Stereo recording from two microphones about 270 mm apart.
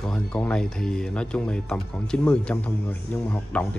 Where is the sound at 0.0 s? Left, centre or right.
Centre.